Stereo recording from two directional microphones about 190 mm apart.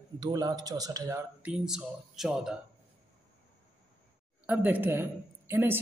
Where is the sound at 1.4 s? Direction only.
5° right (ahead or behind).